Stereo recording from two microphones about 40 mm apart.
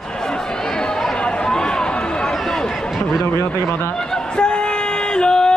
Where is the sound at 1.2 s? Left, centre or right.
Centre.